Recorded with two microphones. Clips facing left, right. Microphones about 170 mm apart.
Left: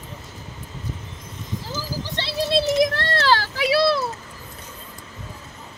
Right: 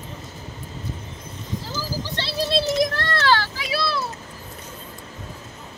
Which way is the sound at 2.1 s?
20° left (ahead or behind).